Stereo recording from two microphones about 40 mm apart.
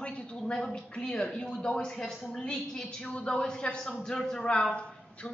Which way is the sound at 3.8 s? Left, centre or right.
Centre.